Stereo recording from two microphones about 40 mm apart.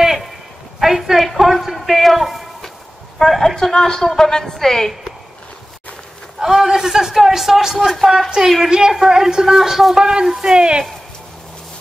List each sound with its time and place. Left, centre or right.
0.7 s a woman's voice: centre
6.4 s a man's voice: centre
8.6 s a man's voice: centre
10.5 s speech: right